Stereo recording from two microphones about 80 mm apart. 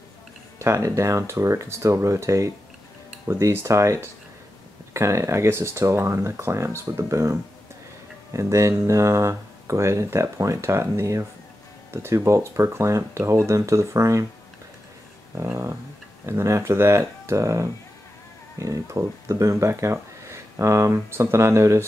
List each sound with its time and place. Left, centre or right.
0.6 s speech: right
15.3 s speech: right